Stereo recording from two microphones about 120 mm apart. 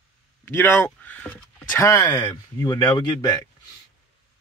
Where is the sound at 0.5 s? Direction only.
20° left (ahead or behind).